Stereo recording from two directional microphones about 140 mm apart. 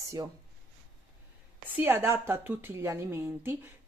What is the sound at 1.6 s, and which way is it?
A woman's voice, 15° right (ahead or behind).